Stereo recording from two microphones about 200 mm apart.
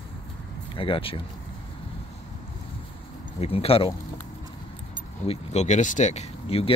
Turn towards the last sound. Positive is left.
turn(degrees=30)  # may be behind; listen again after turning